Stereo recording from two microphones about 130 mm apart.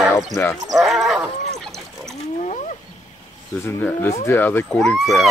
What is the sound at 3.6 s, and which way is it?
Speech, 20° left (ahead or behind).